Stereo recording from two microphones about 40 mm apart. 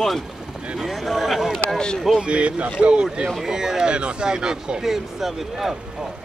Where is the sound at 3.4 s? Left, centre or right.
Centre.